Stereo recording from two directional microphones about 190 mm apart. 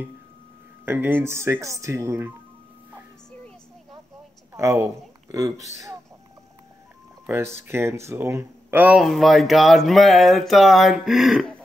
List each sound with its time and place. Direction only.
0.8 s speech: 10° right (ahead or behind)
4.6 s speech: 15° right (ahead or behind)
7.2 s speech: 10° right (ahead or behind)